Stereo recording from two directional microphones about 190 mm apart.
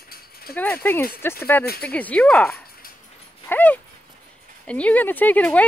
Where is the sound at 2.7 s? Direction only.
50° left (ahead or behind).